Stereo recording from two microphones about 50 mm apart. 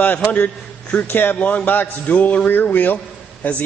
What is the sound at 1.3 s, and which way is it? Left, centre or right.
Speech, left.